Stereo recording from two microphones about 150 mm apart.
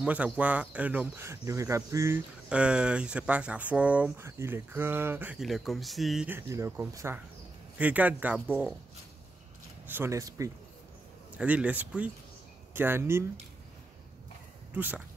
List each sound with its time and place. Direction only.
0.0 s speech: 10° right (ahead or behind)
2.5 s speech: 5° right (ahead or behind)
5.4 s speech: centre (ahead or behind)
6.2 s speech: 15° right (ahead or behind)
9.8 s speech: 15° right (ahead or behind)
11.3 s speech: 10° right (ahead or behind)
14.7 s speech: 10° right (ahead or behind)